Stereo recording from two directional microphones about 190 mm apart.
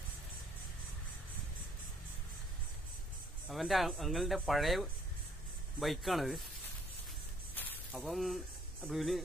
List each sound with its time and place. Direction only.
3.4 s speech: centre (ahead or behind)
7.5 s a sound: 10° left (ahead or behind)
8.8 s speech: centre (ahead or behind)